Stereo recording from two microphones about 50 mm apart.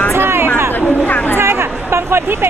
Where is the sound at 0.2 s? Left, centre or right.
Right.